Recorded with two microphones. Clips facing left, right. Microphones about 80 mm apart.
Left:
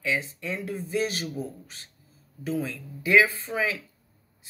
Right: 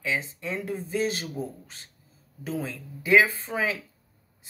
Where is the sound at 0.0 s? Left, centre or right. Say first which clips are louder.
Left 1 dB; right.